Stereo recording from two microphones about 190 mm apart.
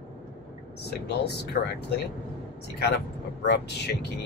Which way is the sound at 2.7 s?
60° left (ahead or behind).